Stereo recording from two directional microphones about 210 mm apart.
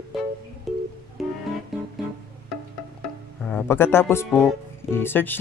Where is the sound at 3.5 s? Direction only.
10° left (ahead or behind).